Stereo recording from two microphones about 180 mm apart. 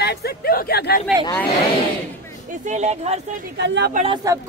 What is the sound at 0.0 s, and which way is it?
Speech, 60° left (ahead or behind).